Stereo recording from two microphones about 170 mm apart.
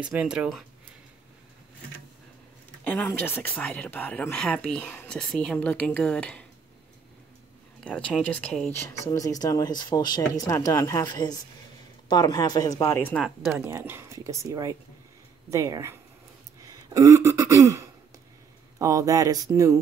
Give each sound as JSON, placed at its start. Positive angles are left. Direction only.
{"t": 0.0, "sound": "speech", "side_deg": -5}
{"t": 2.8, "sound": "speech", "side_deg": 10}
{"t": 7.8, "sound": "speech", "side_deg": 5}
{"t": 9.1, "sound": "speech", "side_deg": 20}
{"t": 13.7, "sound": "speech", "side_deg": -15}
{"t": 16.6, "sound": "throat clearing", "side_deg": -20}
{"t": 18.8, "sound": "speech", "side_deg": -20}